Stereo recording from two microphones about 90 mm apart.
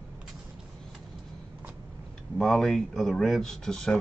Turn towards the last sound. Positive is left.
turn(degrees=5)  # may be behind; listen again after turning